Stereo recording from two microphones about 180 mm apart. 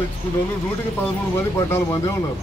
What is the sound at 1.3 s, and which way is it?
Speech, 15° left (ahead or behind).